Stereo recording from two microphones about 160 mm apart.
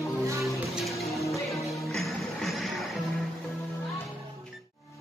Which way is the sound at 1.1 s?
20° left (ahead or behind).